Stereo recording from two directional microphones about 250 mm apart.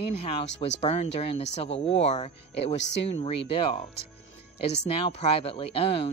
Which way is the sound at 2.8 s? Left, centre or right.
Left.